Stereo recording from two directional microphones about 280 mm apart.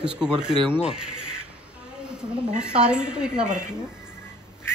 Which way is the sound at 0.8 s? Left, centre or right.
Centre.